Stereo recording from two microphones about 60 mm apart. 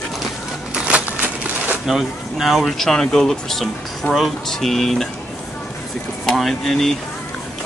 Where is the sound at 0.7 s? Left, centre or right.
Right.